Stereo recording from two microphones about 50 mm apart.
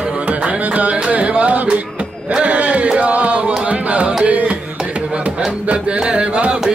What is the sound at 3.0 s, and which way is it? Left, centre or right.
Music, right.